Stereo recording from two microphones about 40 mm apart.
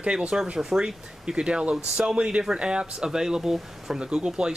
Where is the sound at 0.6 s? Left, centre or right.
Centre.